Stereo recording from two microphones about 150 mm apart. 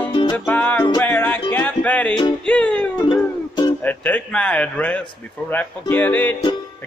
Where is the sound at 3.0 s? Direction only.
30° left (ahead or behind).